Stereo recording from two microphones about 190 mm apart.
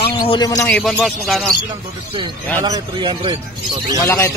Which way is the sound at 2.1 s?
25° right (ahead or behind).